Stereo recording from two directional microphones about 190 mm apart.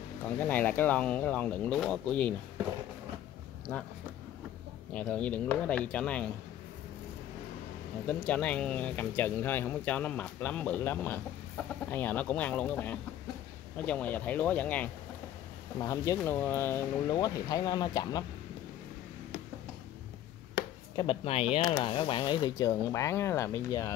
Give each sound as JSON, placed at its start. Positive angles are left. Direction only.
{"t": 0.4, "sound": "speech", "side_deg": 10}
{"t": 4.9, "sound": "speech", "side_deg": 10}
{"t": 8.1, "sound": "speech", "side_deg": 5}
{"t": 20.9, "sound": "speech", "side_deg": 25}
{"t": 21.5, "sound": "speech", "side_deg": 15}